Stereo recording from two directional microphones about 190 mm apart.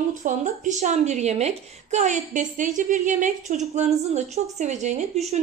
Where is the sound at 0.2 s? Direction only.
40° right (ahead or behind).